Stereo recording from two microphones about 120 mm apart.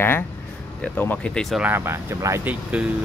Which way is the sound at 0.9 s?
15° left (ahead or behind).